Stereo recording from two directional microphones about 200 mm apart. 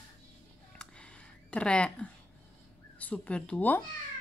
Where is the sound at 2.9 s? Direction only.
5° left (ahead or behind).